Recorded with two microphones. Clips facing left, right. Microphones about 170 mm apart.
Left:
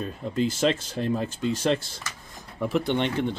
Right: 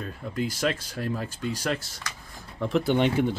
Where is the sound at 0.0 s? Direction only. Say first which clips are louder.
Left 4 dB; 20° left (ahead or behind).